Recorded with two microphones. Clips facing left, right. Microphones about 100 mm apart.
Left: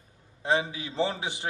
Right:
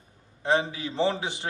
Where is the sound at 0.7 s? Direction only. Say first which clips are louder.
Right 3 dB; 15° left (ahead or behind).